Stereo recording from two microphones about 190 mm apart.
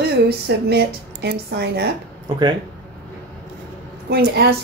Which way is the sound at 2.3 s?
25° right (ahead or behind).